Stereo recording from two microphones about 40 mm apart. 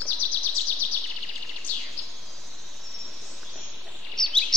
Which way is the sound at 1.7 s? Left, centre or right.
Left.